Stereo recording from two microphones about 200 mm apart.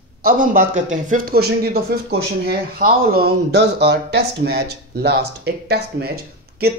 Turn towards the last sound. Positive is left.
turn(degrees=-50)  # may be behind; listen again after turning